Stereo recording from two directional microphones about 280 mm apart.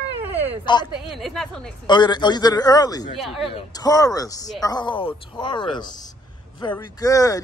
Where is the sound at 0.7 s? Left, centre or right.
Centre.